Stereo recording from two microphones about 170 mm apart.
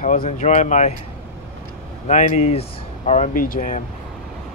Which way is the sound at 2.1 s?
40° left (ahead or behind).